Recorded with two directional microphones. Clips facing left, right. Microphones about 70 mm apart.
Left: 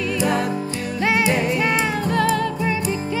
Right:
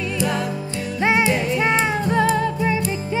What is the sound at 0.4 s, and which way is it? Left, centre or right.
Music, left.